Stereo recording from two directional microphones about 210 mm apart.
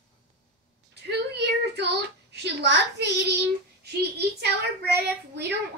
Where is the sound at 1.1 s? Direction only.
55° right (ahead or behind).